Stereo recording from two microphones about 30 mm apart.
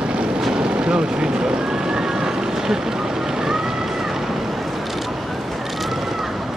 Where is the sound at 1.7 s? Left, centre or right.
Right.